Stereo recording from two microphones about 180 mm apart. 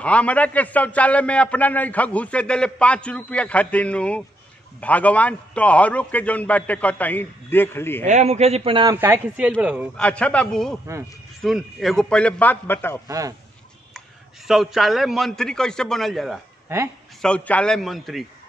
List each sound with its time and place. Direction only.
0.0 s a man's voice: 5° left (ahead or behind)
8.0 s a man's voice: 40° right (ahead or behind)
8.9 s speech: 10° right (ahead or behind)
9.9 s a man's voice: 5° left (ahead or behind)
14.5 s a man's voice: centre (ahead or behind)
16.6 s speech: 10° right (ahead or behind)
17.2 s a man's voice: 5° left (ahead or behind)